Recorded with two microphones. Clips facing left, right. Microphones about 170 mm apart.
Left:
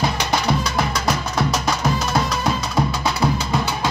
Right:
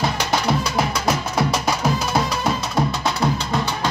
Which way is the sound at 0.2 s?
5° right (ahead or behind).